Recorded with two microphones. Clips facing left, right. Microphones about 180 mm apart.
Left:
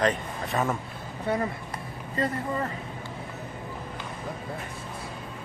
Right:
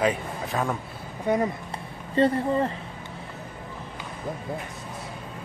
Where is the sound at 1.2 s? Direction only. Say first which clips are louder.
Right 4 dB; 15° right (ahead or behind).